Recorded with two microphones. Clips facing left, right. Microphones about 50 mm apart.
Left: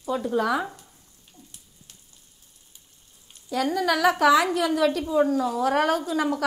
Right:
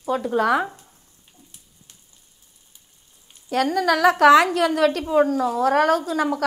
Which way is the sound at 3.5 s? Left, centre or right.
Right.